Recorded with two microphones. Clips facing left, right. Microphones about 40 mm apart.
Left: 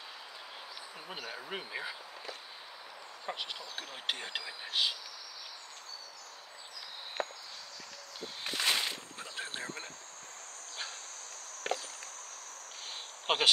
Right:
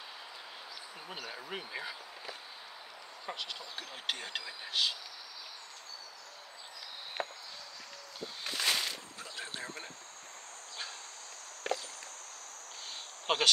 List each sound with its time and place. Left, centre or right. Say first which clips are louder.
1.0 s speech: left 1 dB; centre
3.3 s speech: left 1 dB; centre
7.2 s walk: left 1 dB; centre
8.5 s a sound: left 1 dB; centre
11.7 s walk: even; left
13.3 s a sound: even; left